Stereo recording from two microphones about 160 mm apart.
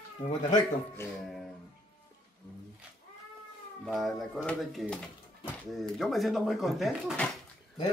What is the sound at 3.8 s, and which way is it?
Speech, centre (ahead or behind).